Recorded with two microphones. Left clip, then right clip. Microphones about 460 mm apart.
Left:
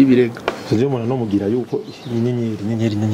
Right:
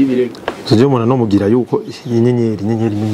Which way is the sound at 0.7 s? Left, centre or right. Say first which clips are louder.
Right 8 dB; right.